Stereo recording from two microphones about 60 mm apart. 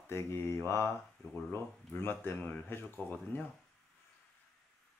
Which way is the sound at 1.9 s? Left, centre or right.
Left.